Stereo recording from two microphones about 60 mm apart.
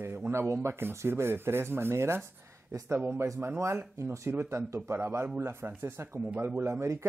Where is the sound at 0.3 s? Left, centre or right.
Right.